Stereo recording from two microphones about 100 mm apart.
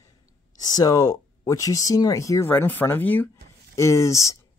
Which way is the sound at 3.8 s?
30° left (ahead or behind).